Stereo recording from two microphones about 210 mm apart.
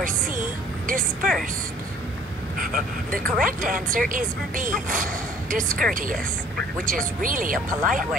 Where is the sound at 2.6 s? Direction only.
40° right (ahead or behind).